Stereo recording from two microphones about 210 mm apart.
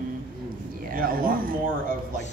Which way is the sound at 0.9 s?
40° right (ahead or behind).